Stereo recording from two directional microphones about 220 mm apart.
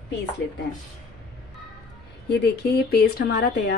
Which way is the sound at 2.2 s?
50° left (ahead or behind).